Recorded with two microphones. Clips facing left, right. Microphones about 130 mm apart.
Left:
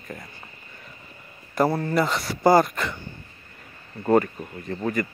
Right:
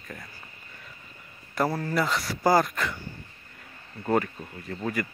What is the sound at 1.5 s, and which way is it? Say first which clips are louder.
A man's voice: left 5 dB; centre (ahead or behind).